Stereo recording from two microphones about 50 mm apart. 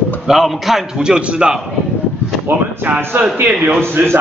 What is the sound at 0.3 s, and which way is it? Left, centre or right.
A man's voice, centre.